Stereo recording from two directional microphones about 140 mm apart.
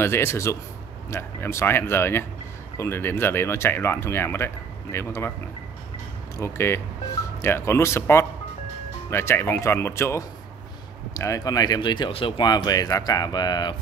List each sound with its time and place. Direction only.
0.0 s speech: 20° left (ahead or behind)
6.3 s speech: 20° left (ahead or behind)